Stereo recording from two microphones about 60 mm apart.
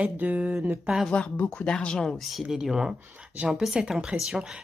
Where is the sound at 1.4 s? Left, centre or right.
Centre.